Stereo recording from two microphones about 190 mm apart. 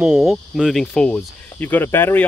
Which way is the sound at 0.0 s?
5° right (ahead or behind).